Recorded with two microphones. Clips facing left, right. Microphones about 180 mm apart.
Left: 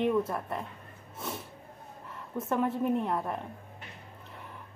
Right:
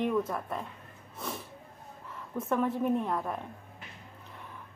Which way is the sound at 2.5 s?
Centre (ahead or behind).